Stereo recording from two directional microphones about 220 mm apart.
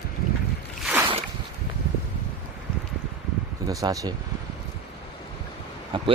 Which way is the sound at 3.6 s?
15° right (ahead or behind).